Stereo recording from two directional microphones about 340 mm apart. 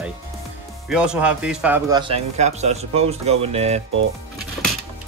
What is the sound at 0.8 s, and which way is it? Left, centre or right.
A man's voice, centre.